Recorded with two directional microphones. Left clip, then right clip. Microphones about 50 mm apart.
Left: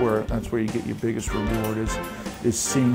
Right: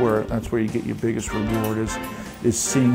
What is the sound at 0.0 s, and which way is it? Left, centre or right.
Speech, right.